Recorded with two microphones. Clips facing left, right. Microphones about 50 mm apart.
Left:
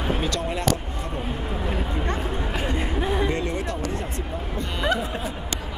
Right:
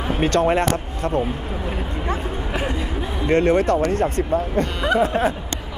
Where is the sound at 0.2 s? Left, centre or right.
Right.